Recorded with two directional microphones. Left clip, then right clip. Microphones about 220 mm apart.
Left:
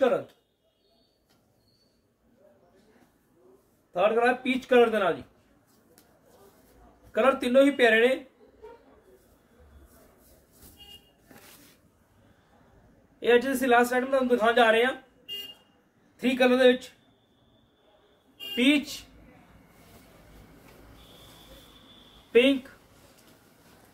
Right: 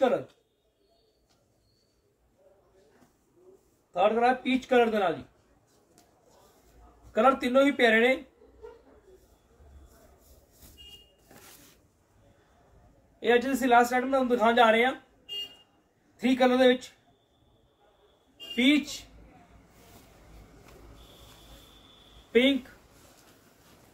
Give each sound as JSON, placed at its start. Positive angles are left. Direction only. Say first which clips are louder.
{"t": 3.9, "sound": "a man's voice", "louder": "left 1 dB", "side_deg": 25}
{"t": 7.1, "sound": "a man's voice", "louder": "even", "side_deg": 25}
{"t": 13.2, "sound": "a man's voice", "louder": "left 2 dB", "side_deg": 25}
{"t": 15.2, "sound": "a sound", "louder": "right 1 dB", "side_deg": 45}
{"t": 16.2, "sound": "a man's voice", "louder": "left 1 dB", "side_deg": 25}
{"t": 18.5, "sound": "a man's voice", "louder": "left 1 dB", "side_deg": 25}